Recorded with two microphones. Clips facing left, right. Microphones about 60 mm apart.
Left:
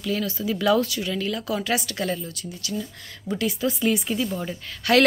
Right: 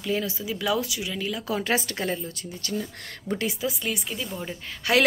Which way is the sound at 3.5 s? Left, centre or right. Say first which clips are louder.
Left 6 dB; centre.